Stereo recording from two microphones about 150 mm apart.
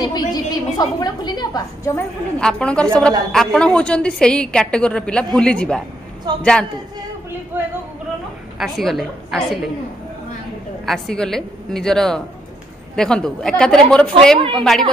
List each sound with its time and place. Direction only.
0.0 s a woman's voice: 25° left (ahead or behind)
2.0 s a woman's voice: 5° left (ahead or behind)
6.3 s a woman's voice: 25° right (ahead or behind)
7.5 s a sound: 15° right (ahead or behind)
8.5 s a woman's voice: centre (ahead or behind)
10.9 s a woman's voice: 5° left (ahead or behind)